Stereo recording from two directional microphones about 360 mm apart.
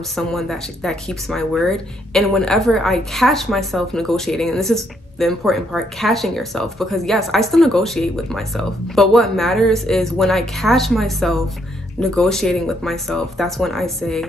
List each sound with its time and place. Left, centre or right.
0.1 s speech: centre